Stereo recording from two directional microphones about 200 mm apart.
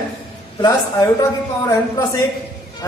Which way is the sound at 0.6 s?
15° left (ahead or behind).